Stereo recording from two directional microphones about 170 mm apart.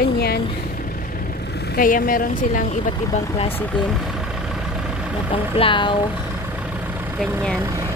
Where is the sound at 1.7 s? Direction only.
55° left (ahead or behind).